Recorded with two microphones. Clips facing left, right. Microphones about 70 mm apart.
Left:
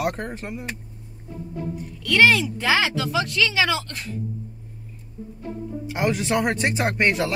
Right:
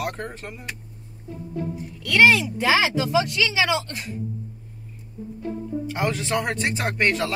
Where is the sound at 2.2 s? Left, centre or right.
Centre.